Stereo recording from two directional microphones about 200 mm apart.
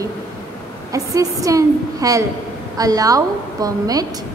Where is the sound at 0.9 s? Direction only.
15° right (ahead or behind).